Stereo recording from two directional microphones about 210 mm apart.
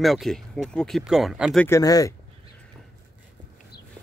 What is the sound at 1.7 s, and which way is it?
Speech, 15° left (ahead or behind).